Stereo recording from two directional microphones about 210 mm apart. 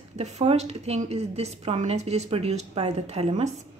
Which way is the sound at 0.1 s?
30° right (ahead or behind).